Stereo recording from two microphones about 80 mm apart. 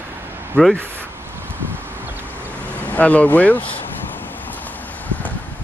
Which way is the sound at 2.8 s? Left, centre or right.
Left.